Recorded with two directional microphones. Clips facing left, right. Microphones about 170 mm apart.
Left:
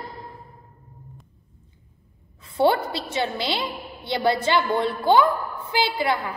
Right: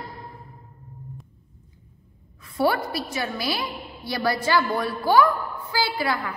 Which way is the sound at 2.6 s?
25° left (ahead or behind).